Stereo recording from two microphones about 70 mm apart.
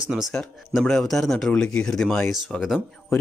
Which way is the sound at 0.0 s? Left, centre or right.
Centre.